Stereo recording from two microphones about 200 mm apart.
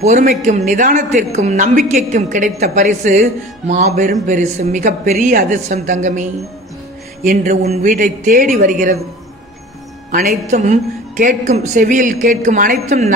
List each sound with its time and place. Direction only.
0.0 s a woman's voice: 35° right (ahead or behind)
7.2 s a woman's voice: 40° right (ahead or behind)
10.5 s a woman's voice: 35° right (ahead or behind)